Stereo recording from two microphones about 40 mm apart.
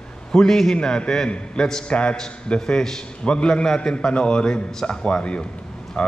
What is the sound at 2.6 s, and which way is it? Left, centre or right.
Speech, centre.